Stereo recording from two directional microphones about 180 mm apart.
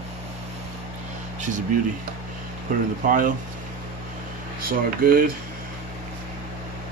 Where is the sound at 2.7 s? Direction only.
50° right (ahead or behind).